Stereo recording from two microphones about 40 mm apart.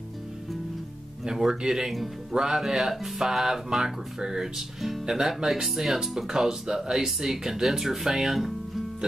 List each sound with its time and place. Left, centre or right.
1.2 s speech: centre
5.0 s speech: centre